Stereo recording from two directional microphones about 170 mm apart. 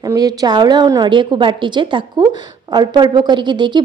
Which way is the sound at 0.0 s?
20° right (ahead or behind).